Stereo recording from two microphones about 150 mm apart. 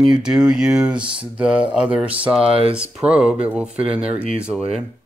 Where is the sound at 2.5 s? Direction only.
40° right (ahead or behind).